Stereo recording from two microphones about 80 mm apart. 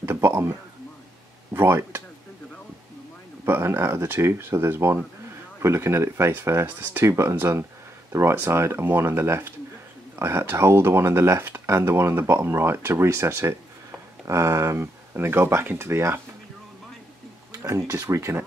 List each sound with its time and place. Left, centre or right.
0.0 s a sound: right
1.5 s speech: right
3.4 s speech: right
17.5 s speech: right